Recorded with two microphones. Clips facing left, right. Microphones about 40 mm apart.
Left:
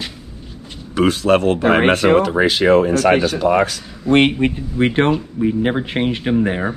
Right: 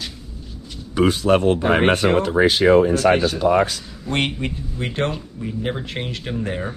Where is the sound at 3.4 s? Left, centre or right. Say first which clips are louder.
Even; left.